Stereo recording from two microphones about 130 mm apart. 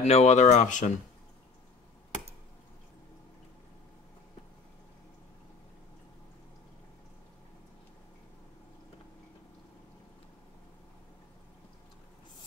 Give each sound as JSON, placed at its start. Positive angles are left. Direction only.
{"t": 0.0, "sound": "speech", "side_deg": 60}